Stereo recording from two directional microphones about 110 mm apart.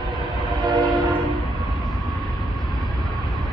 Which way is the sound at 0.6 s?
40° right (ahead or behind).